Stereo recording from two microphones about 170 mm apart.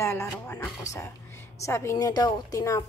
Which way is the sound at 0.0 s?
15° left (ahead or behind).